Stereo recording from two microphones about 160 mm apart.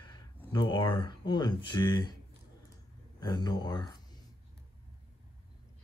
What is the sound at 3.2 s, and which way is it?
Speech, 25° left (ahead or behind).